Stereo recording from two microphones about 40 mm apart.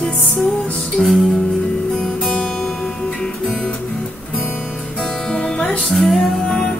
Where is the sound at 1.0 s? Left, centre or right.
Left.